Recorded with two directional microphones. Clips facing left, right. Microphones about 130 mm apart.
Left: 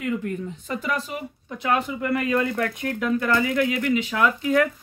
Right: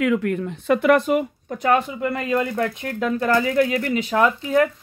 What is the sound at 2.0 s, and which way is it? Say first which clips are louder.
Speech: right 1 dB; 30° right (ahead or behind).